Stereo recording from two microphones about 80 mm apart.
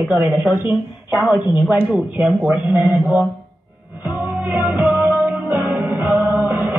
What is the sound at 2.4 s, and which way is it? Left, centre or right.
Speech, right.